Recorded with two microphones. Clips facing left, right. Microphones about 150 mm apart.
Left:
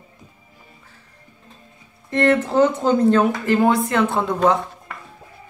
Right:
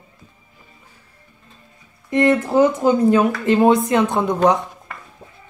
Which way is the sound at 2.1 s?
10° right (ahead or behind).